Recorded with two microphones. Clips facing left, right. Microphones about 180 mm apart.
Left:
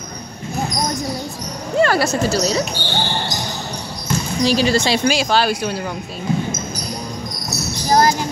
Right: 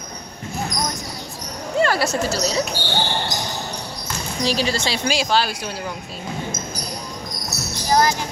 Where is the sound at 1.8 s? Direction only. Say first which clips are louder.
Left 3 dB; 55° left (ahead or behind).